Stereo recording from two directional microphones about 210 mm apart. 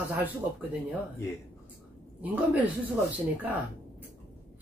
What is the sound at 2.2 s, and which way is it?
Speech, 5° right (ahead or behind).